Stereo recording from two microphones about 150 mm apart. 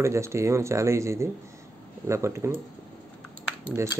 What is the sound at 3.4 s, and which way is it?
Cutlery, 10° right (ahead or behind).